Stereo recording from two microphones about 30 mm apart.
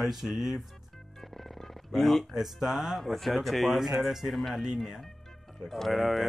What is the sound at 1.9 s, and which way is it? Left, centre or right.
Speech, centre.